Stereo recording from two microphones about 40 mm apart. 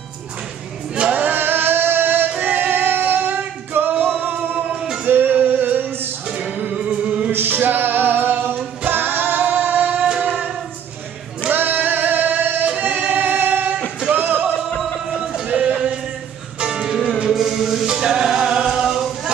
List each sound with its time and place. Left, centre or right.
1.1 s music: right
2.4 s female singing: right
4.0 s music: right
6.2 s music: right
7.1 s music: right
7.3 s music: right
10.0 s music: right
11.5 s music: right
12.7 s singing: right
14.1 s music: right
15.1 s music: centre
15.4 s music: right